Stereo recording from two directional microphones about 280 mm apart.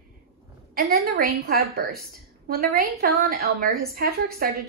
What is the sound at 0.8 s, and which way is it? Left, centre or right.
A woman's voice, right.